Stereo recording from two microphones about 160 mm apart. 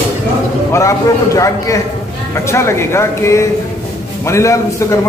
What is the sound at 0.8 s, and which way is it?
A man's voice, 20° left (ahead or behind).